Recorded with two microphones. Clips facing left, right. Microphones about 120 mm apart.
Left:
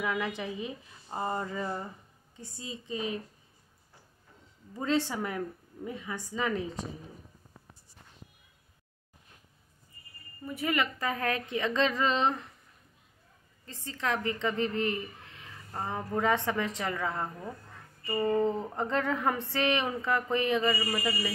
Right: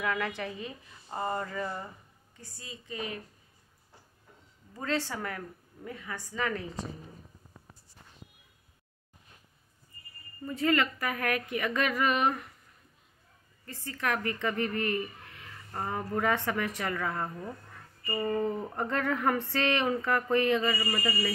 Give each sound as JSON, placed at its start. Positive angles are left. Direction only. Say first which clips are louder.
{"t": 0.0, "sound": "a sound", "louder": "even", "side_deg": 15}
{"t": 2.3, "sound": "a woman's voice", "louder": "left 5 dB", "side_deg": 20}
{"t": 4.7, "sound": "a woman's voice", "louder": "left 3 dB", "side_deg": 20}
{"t": 10.4, "sound": "a woman's voice", "louder": "right 3 dB", "side_deg": 10}
{"t": 13.7, "sound": "a woman's voice", "louder": "even", "side_deg": 20}
{"t": 18.0, "sound": "a sound", "louder": "left 3 dB", "side_deg": 20}